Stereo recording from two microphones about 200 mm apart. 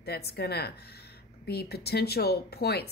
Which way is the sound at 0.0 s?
55° left (ahead or behind).